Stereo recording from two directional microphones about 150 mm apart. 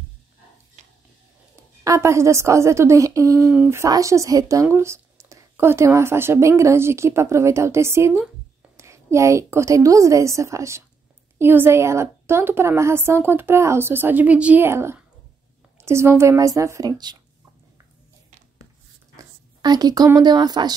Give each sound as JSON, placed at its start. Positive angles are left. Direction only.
{"t": 1.9, "sound": "a woman's voice", "side_deg": -20}
{"t": 19.1, "sound": "a sound", "side_deg": -25}
{"t": 20.2, "sound": "a woman's voice", "side_deg": -30}